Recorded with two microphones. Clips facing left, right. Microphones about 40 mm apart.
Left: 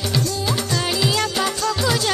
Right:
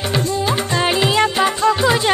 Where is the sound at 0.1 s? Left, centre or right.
Right.